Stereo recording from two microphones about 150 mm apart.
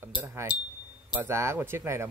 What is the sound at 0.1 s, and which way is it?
Cash register, 15° right (ahead or behind).